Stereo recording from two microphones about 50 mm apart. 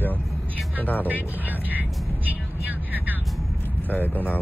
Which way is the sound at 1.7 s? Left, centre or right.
Right.